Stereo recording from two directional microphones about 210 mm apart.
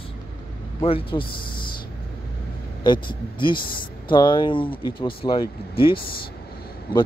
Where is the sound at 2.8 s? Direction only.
20° left (ahead or behind).